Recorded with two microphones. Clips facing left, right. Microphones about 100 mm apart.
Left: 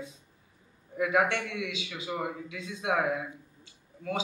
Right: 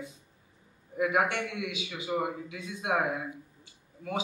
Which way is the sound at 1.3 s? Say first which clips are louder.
Left 1 dB; 25° right (ahead or behind).